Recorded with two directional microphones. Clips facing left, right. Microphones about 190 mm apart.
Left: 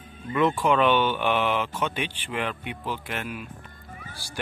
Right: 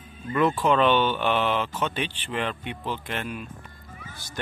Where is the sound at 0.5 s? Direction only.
10° left (ahead or behind).